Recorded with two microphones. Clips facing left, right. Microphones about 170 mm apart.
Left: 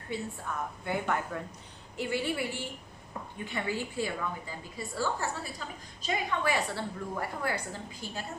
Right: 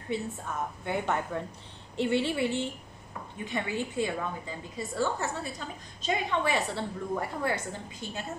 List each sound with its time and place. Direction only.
0.8 s a woman's voice: 25° right (ahead or behind)